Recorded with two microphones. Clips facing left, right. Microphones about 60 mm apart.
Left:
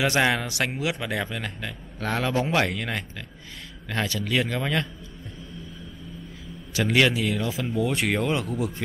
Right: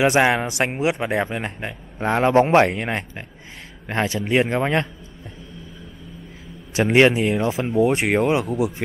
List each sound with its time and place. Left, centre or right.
0.0 s speech: right
6.7 s speech: right; by 8.8 s centre